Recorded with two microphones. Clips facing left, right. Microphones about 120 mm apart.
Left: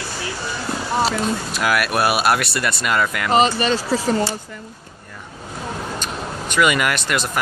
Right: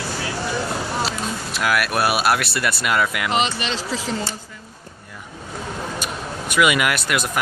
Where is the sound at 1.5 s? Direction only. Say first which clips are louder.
Right 2 dB; centre (ahead or behind).